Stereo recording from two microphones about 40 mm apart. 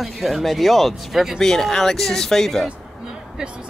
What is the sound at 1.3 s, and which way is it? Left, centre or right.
Speech, centre.